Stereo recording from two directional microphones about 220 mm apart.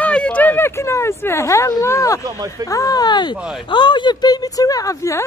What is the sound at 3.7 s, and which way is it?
Speech, 20° left (ahead or behind).